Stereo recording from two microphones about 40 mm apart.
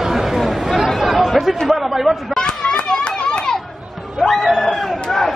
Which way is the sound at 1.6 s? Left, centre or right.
Centre.